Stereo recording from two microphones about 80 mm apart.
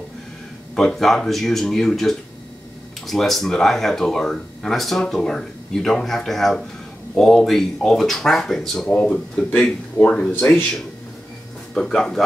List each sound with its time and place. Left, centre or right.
0.7 s speech: centre
11.7 s speech: centre